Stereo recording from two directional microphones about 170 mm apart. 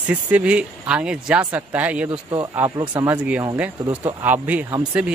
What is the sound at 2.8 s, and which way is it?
Speech, 20° right (ahead or behind).